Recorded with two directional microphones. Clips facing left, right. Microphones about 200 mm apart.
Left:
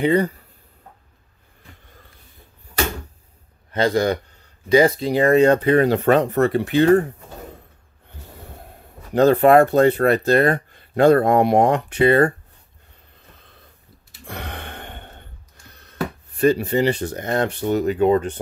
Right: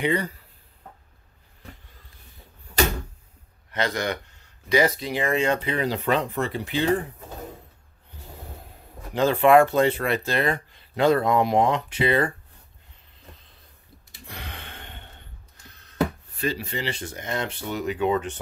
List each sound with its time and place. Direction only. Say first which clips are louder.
0.0 s speech: left 7 dB; 40° left (ahead or behind)
3.7 s speech: left 8 dB; 30° left (ahead or behind); by 6.3 s 45° left (ahead or behind)
6.3 s speech: left 9 dB; 65° left (ahead or behind)
9.1 s speech: left 4 dB; 40° left (ahead or behind)
14.2 s gasp: left 7 dB; 50° left (ahead or behind)
16.3 s speech: left 12 dB; 50° left (ahead or behind)